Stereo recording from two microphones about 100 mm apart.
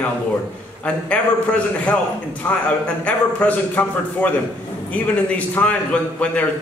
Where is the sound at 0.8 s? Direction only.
15° left (ahead or behind).